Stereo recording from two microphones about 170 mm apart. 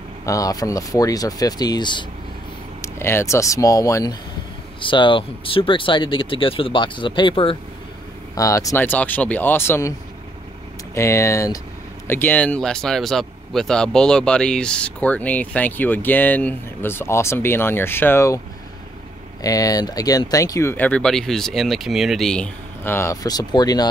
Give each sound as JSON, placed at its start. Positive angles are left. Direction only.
{"t": 0.2, "sound": "speech", "side_deg": 20}
{"t": 2.8, "sound": "speech", "side_deg": 15}
{"t": 8.4, "sound": "speech", "side_deg": 20}
{"t": 11.0, "sound": "speech", "side_deg": 15}
{"t": 19.4, "sound": "speech", "side_deg": 20}